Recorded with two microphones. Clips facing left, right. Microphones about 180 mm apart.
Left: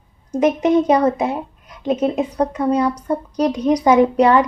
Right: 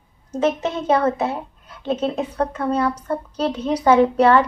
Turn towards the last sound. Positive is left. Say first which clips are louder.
# left 1 dB
turn(degrees=15)  # may be behind; listen again after turning